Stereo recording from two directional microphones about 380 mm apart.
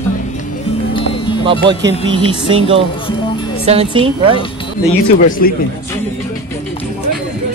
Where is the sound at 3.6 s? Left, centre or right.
Centre.